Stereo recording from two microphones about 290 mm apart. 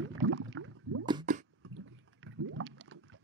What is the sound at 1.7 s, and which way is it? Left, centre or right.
Boat, right.